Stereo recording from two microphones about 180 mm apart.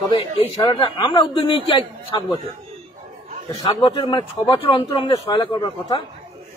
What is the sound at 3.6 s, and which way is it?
A man's voice, 20° left (ahead or behind).